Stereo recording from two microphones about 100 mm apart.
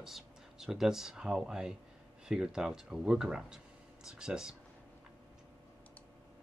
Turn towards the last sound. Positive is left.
turn(degrees=-5)  # may be behind; listen again after turning